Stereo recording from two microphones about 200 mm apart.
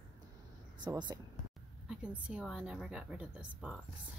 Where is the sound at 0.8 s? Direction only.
20° right (ahead or behind).